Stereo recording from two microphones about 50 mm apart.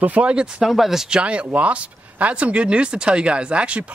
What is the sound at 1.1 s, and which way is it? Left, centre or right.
Speech, right.